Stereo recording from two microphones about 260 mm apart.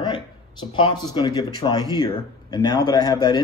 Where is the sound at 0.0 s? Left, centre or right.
Centre.